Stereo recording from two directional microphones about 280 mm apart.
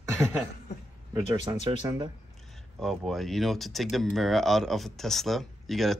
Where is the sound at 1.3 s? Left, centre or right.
Centre.